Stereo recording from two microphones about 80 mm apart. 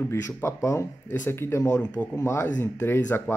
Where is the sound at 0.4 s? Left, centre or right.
Left.